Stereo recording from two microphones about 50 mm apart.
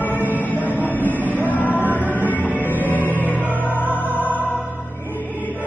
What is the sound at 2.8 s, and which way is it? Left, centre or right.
Music, right.